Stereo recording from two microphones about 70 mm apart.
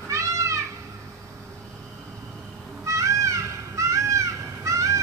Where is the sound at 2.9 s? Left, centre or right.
Right.